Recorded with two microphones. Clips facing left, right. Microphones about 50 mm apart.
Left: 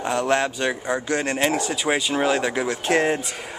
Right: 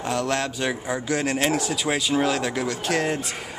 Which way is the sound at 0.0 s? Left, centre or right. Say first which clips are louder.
Left 3 dB; centre.